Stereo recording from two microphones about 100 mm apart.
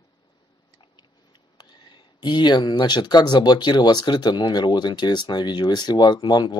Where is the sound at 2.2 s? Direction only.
45° left (ahead or behind).